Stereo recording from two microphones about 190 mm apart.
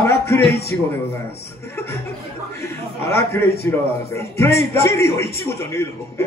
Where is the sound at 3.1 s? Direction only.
10° left (ahead or behind).